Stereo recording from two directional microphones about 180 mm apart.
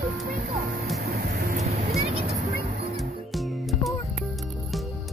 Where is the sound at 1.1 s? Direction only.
55° right (ahead or behind).